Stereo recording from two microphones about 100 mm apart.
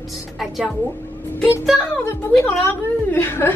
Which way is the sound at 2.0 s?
25° left (ahead or behind).